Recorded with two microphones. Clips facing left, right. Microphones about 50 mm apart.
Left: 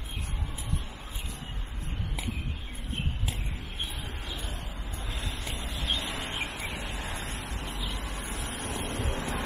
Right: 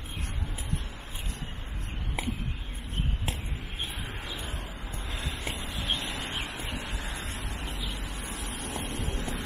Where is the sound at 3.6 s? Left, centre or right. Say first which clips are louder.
Even; right.